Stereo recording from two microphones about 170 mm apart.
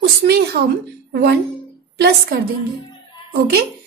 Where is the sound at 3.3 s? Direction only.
65° right (ahead or behind).